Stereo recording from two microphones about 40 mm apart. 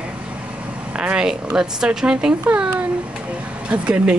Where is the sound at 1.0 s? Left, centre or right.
Right.